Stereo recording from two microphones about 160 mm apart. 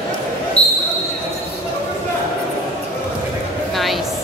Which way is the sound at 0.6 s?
40° left (ahead or behind).